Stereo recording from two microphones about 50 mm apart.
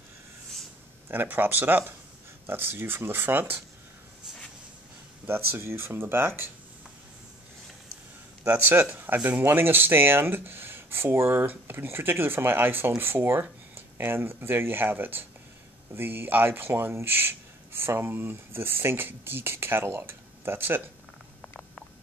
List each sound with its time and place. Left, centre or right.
1.1 s speech: right
5.2 s speech: right
8.5 s speech: right